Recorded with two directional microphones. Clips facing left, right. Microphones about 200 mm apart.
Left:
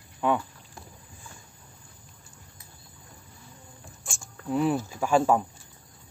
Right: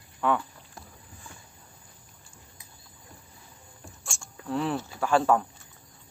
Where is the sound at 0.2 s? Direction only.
15° left (ahead or behind).